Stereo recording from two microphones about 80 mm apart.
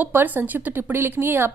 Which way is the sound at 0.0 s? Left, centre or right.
Right.